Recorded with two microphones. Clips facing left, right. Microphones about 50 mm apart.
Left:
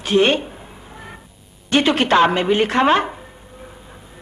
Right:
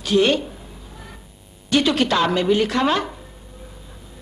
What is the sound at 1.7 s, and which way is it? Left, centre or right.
Chopping, left.